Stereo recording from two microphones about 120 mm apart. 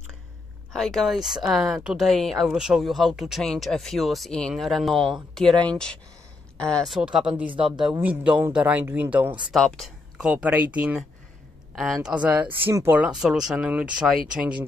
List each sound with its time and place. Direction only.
0.7 s speech: centre (ahead or behind)
7.0 s speech: 5° right (ahead or behind)
9.5 s speech: centre (ahead or behind)
11.7 s speech: centre (ahead or behind)
13.1 s speech: 5° right (ahead or behind)